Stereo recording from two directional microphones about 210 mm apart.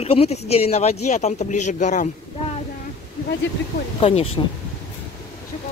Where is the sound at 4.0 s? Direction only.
30° left (ahead or behind).